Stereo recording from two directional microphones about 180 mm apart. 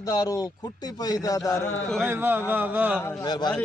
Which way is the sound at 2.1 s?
10° right (ahead or behind).